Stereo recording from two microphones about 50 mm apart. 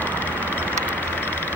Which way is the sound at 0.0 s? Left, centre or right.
Left.